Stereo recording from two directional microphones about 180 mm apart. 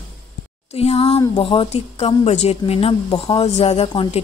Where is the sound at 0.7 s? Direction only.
35° left (ahead or behind).